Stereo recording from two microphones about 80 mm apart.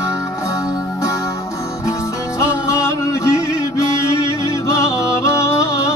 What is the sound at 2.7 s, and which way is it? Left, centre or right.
Music, left.